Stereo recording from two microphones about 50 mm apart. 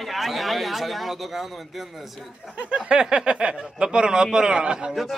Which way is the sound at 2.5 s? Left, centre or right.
Right.